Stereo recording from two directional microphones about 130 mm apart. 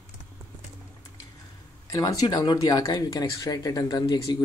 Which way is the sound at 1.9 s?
25° left (ahead or behind).